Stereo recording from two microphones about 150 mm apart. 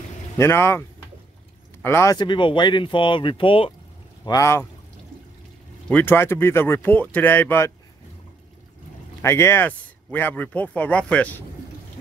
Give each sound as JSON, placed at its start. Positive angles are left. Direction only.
{"t": 0.4, "sound": "speech", "side_deg": 15}
{"t": 2.1, "sound": "speech", "side_deg": 30}
{"t": 4.2, "sound": "speech", "side_deg": 25}
{"t": 5.9, "sound": "speech", "side_deg": 10}
{"t": 9.2, "sound": "speech", "side_deg": 15}